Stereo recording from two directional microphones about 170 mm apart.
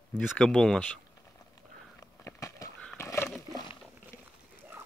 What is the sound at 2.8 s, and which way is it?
Roaring cats, 15° left (ahead or behind).